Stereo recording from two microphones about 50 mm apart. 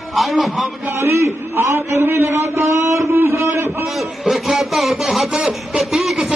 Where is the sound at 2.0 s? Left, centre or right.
Right.